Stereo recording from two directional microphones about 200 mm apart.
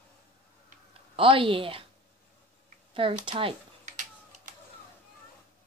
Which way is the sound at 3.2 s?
30° right (ahead or behind).